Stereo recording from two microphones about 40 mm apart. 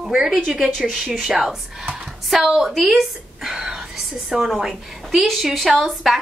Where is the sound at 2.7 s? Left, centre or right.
Centre.